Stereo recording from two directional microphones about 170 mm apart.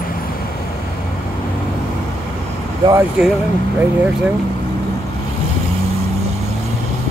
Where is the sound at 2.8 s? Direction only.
25° right (ahead or behind).